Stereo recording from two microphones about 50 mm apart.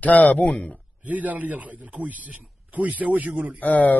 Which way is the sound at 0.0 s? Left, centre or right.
Left.